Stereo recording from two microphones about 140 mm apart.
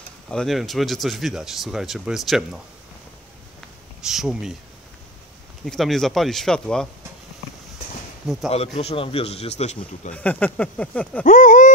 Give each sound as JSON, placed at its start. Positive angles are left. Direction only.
{"t": 0.3, "sound": "speech", "side_deg": 5}
{"t": 4.0, "sound": "speech", "side_deg": -5}
{"t": 5.7, "sound": "speech", "side_deg": 0}
{"t": 8.5, "sound": "a man's voice", "side_deg": 45}
{"t": 10.1, "sound": "speech", "side_deg": 10}
{"t": 11.2, "sound": "speech", "side_deg": 70}